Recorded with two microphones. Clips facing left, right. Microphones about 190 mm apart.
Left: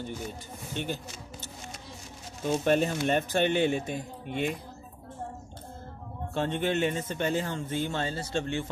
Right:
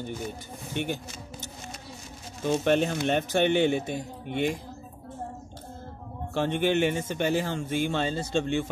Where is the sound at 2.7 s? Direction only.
5° left (ahead or behind).